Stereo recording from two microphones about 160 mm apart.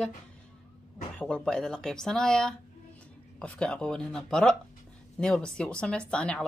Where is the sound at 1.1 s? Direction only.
5° left (ahead or behind).